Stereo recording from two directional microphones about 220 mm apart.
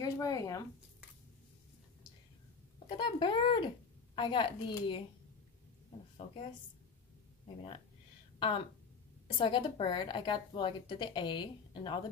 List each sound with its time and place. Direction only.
0.0 s speech: 15° left (ahead or behind)
3.0 s a woman's voice: 20° left (ahead or behind)
8.4 s a woman's voice: 25° left (ahead or behind)